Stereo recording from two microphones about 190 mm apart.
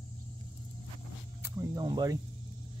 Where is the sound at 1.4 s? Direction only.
20° right (ahead or behind).